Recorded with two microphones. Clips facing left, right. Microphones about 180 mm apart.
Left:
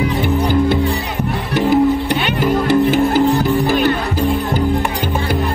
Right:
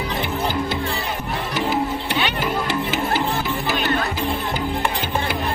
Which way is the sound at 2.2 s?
55° left (ahead or behind).